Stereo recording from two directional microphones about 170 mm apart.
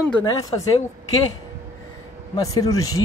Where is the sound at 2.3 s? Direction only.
20° left (ahead or behind).